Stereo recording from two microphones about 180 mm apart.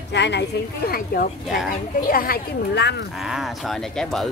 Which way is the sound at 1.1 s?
55° left (ahead or behind).